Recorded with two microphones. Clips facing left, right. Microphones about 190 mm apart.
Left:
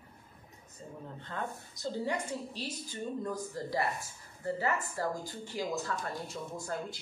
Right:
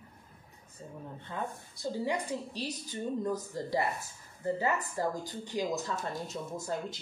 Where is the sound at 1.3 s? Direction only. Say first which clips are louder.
Right 1 dB; 10° right (ahead or behind).